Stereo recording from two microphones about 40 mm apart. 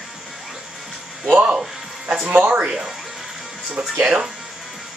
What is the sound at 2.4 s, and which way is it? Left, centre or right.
Speech, right.